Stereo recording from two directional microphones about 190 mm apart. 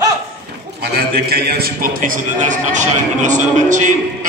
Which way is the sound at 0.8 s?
55° right (ahead or behind).